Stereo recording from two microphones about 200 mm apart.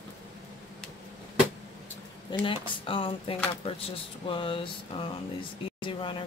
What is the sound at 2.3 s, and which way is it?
Speech, 25° left (ahead or behind).